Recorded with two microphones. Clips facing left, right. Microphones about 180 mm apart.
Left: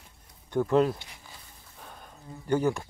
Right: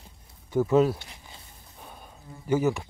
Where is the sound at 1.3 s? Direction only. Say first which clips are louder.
Right 1 dB; 15° right (ahead or behind).